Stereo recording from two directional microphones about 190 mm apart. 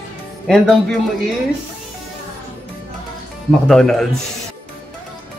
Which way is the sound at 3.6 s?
5° left (ahead or behind).